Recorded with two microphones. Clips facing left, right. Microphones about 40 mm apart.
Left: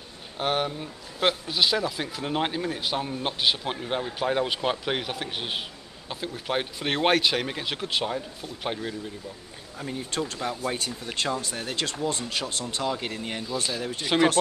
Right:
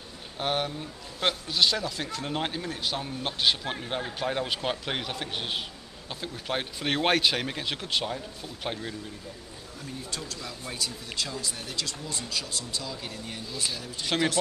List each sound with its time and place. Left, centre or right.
0.4 s speech: centre
9.8 s speech: left